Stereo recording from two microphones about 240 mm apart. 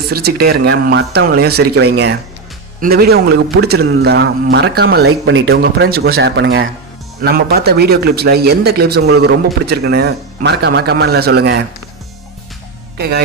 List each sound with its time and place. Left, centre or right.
0.1 s a man's voice: right
12.9 s speech: right